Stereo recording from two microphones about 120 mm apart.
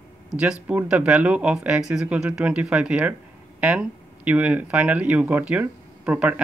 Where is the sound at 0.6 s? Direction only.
10° right (ahead or behind).